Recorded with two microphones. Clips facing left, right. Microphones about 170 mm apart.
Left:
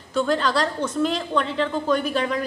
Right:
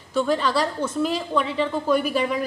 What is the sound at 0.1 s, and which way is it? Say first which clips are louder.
A woman's voice: even; 5° right (ahead or behind).